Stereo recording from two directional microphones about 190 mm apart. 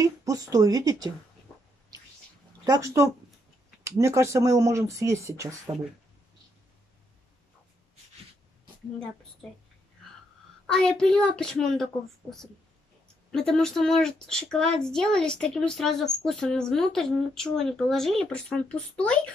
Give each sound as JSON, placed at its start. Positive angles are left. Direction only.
{"t": 0.0, "sound": "speech", "side_deg": -15}
{"t": 2.6, "sound": "speech", "side_deg": -20}
{"t": 10.7, "sound": "speech", "side_deg": 5}